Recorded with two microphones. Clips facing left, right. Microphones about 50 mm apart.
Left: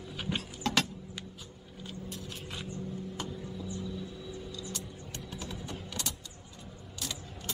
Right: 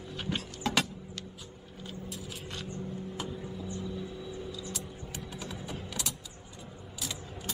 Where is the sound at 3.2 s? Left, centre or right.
Centre.